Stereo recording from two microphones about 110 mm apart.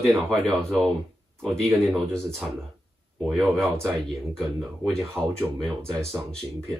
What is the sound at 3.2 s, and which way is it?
Speech, 5° left (ahead or behind).